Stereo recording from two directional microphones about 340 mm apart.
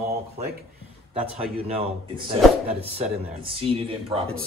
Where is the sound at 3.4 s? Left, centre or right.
Centre.